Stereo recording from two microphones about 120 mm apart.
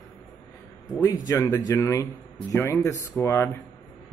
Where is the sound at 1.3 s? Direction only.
25° left (ahead or behind).